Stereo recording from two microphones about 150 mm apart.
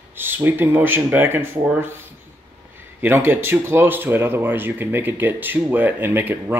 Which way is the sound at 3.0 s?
15° right (ahead or behind).